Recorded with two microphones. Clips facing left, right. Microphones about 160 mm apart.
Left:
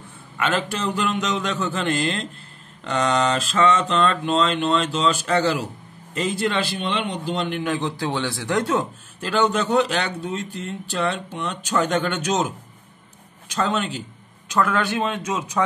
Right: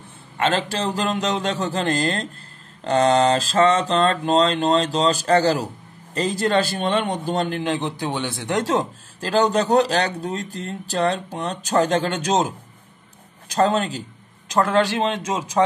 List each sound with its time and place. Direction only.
0.4 s a man's voice: 30° right (ahead or behind)